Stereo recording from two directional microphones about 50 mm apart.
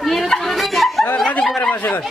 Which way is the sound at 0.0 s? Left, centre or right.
Centre.